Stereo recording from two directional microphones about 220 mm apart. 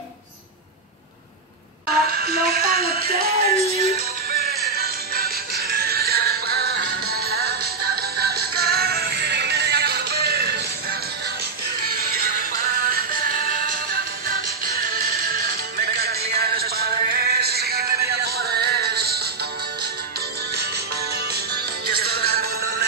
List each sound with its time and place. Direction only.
2.0 s music: 45° right (ahead or behind)
21.8 s music: 45° right (ahead or behind)